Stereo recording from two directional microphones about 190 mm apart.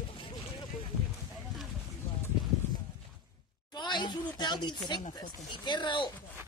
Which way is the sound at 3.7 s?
25° left (ahead or behind).